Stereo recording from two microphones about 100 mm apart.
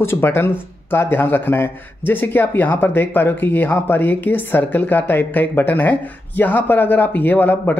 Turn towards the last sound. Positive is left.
turn(degrees=20)  # may be behind; listen again after turning